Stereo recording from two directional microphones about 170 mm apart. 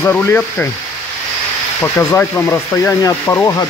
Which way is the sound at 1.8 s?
10° left (ahead or behind).